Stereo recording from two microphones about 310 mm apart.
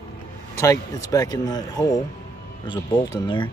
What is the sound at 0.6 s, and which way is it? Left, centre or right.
Speech, centre.